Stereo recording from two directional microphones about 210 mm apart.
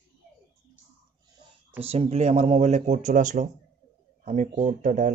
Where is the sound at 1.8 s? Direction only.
30° right (ahead or behind).